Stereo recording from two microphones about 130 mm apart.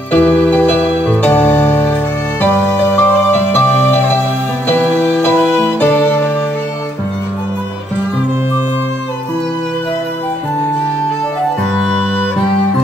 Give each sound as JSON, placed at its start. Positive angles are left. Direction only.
{"t": 0.1, "sound": "music", "side_deg": 10}
{"t": 11.8, "sound": "music", "side_deg": 5}